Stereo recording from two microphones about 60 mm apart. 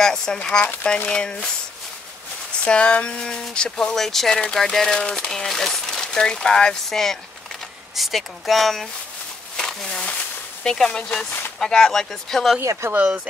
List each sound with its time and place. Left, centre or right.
0.0 s speech: centre
2.6 s speech: centre
9.6 s a sound: centre
10.9 s speech: centre
12.9 s speech: right